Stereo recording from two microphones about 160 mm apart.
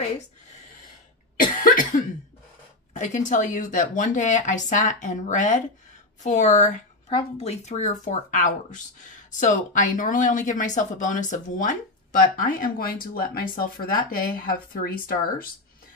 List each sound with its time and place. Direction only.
1.3 s cough: 60° left (ahead or behind)
2.9 s speech: 50° left (ahead or behind); by 15.4 s 65° left (ahead or behind)